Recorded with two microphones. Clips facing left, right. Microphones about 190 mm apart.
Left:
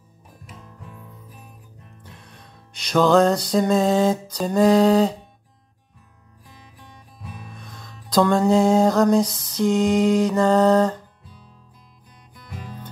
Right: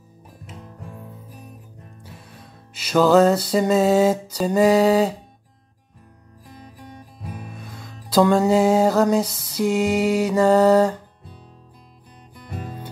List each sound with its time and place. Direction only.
2.0 s music: 5° right (ahead or behind)
6.6 s music: 45° right (ahead or behind)
7.4 s music: 5° right (ahead or behind)
12.4 s music: 45° right (ahead or behind)